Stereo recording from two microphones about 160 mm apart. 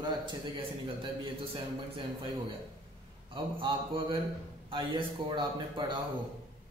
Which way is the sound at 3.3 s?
30° right (ahead or behind).